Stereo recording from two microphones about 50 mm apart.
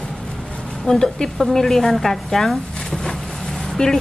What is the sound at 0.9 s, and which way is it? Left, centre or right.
A woman's voice, centre.